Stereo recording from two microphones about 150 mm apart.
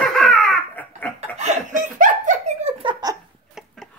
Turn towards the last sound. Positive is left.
turn(degrees=-25)  # may be behind; listen again after turning